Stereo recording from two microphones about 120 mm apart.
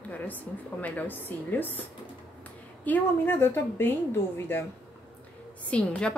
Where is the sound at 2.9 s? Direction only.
15° left (ahead or behind).